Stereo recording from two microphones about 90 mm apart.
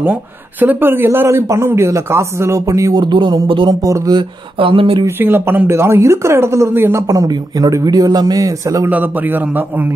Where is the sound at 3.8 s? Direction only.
40° right (ahead or behind).